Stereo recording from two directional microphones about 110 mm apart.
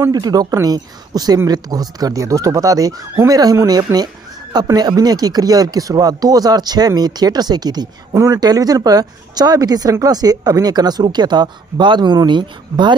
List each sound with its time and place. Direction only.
0.1 s speech: 35° right (ahead or behind)
8.1 s speech: 25° right (ahead or behind); by 12.9 s 45° right (ahead or behind)